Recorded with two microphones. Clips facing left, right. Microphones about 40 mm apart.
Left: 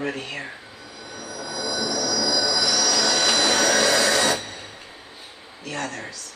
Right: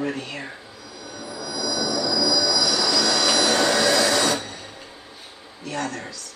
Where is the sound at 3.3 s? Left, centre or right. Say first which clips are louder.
Right 1 dB; left.